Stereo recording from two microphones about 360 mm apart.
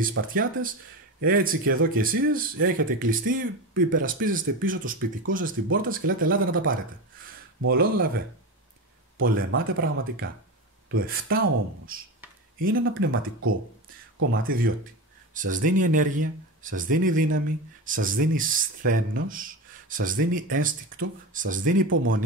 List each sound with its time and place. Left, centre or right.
0.0 s speech: right
9.2 s speech: right
14.4 s speech: right
21.8 s speech: right